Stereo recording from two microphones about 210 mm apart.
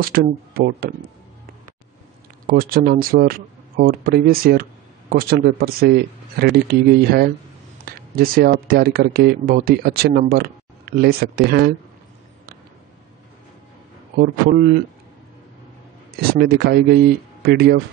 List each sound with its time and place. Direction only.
0.0 s speech: 45° right (ahead or behind)
2.4 s speech: 45° right (ahead or behind)
16.2 s speech: 50° right (ahead or behind)